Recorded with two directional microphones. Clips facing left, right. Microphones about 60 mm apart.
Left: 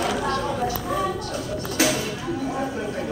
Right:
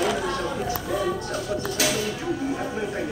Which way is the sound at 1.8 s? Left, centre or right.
Left.